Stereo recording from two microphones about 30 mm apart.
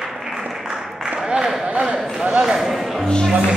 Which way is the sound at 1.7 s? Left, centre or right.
Right.